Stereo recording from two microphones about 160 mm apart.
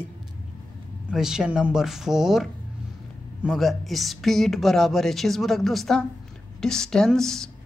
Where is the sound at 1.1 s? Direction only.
5° right (ahead or behind).